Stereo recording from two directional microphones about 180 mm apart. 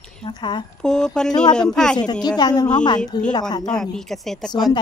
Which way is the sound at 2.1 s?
25° left (ahead or behind).